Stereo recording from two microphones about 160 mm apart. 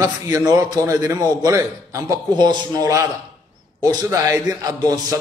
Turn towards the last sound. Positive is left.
turn(degrees=-25)  # may be behind; listen again after turning